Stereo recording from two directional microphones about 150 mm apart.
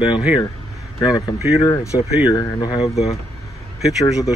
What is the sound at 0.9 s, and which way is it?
Speech, 25° left (ahead or behind).